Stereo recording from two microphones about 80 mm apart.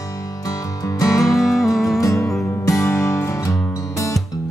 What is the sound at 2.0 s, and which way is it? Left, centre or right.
Music, left.